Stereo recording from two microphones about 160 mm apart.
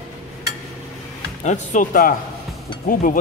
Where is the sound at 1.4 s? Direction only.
50° left (ahead or behind).